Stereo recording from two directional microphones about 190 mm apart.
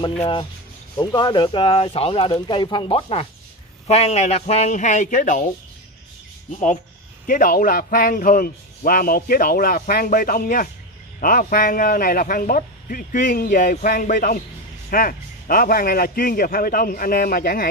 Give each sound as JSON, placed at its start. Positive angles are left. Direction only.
{"t": 0.0, "sound": "speech", "side_deg": 25}
{"t": 6.5, "sound": "a man's voice", "side_deg": 40}